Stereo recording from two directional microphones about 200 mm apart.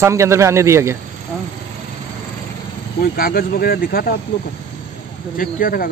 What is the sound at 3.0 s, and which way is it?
Speech, 45° left (ahead or behind).